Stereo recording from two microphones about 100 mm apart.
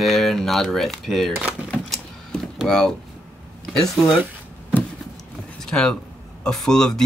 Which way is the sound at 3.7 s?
5° left (ahead or behind).